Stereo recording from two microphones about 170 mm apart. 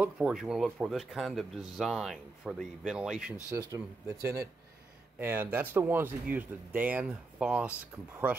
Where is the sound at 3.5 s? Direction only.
20° right (ahead or behind).